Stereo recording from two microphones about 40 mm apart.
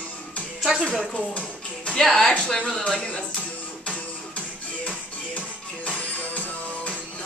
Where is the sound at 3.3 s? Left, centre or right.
Left.